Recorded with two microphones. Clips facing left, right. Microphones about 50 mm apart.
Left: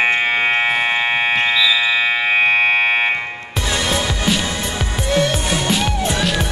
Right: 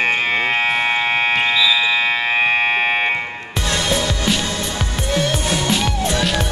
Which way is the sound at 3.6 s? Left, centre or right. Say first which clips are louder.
Even; centre.